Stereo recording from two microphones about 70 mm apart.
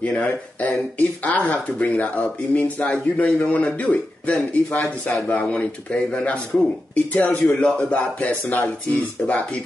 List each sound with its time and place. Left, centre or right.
0.0 s speech: left